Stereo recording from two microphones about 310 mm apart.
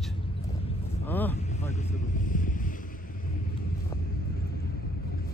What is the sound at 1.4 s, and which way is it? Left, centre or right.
Speech, left.